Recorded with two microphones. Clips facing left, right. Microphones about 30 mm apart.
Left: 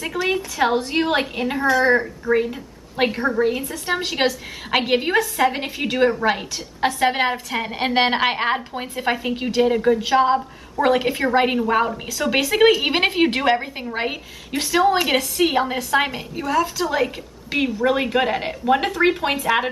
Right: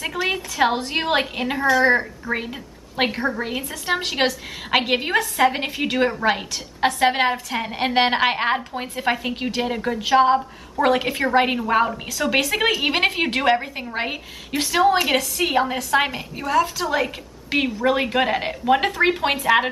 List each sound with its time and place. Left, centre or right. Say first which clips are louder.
0.0 s a woman's voice: left 1 dB; centre
2.3 s a woman's voice: left 7 dB; right
3.2 s a woman's voice: left 4 dB; centre